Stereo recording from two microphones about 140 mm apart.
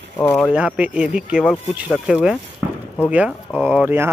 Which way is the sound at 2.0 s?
5° right (ahead or behind).